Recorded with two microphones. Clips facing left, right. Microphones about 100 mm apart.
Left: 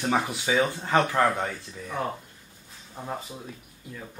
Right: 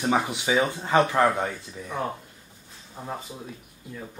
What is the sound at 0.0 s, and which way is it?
Speech, 20° right (ahead or behind).